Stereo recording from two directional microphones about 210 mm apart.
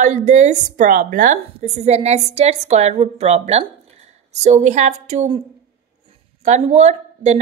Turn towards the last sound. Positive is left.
turn(degrees=-30)  # may be behind; listen again after turning